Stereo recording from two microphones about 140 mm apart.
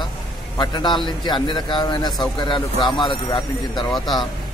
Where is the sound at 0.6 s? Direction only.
30° left (ahead or behind).